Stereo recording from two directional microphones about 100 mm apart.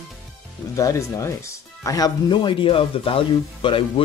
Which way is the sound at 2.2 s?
55° left (ahead or behind).